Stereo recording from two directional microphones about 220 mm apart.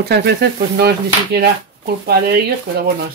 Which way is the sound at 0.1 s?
50° right (ahead or behind).